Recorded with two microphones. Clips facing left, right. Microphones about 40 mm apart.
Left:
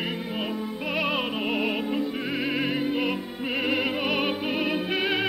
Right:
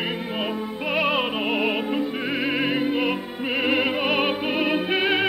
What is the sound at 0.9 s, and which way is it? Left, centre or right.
Music, centre.